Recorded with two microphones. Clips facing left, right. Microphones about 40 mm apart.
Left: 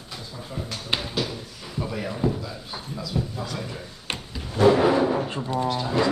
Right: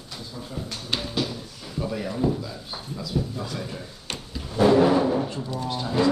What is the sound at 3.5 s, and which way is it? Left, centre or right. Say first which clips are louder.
Speech: even; centre.